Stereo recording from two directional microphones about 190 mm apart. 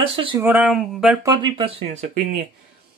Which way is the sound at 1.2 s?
25° right (ahead or behind).